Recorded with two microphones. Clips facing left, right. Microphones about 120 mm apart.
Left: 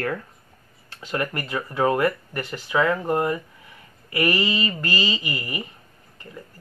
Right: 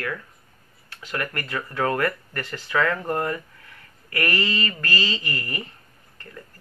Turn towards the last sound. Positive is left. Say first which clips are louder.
# left 2 dB
turn(degrees=15)  # may be behind; listen again after turning